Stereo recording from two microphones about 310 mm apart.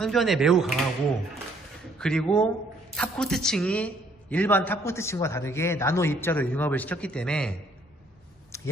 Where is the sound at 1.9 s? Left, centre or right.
Centre.